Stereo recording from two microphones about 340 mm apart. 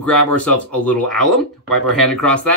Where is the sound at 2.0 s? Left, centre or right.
Centre.